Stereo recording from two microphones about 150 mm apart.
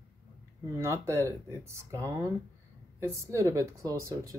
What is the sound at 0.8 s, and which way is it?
Speech, 20° right (ahead or behind).